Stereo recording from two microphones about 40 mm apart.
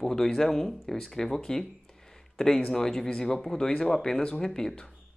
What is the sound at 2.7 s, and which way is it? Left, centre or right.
Speech, centre.